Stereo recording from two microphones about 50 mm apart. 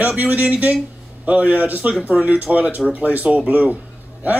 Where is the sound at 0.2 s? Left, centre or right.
Right.